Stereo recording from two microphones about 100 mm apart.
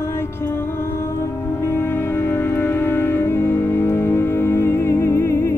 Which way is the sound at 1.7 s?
20° left (ahead or behind).